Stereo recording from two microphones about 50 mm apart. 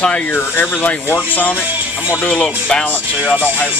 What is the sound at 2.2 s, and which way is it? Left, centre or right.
Speech, left.